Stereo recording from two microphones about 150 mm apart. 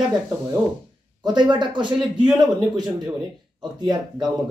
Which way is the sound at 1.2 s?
30° right (ahead or behind).